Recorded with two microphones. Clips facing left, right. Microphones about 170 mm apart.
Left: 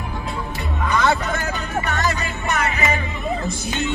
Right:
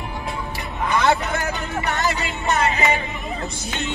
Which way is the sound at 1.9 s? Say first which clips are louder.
Right 2 dB; 20° right (ahead or behind).